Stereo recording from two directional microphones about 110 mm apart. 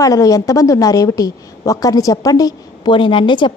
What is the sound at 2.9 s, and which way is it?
Speech, 50° left (ahead or behind).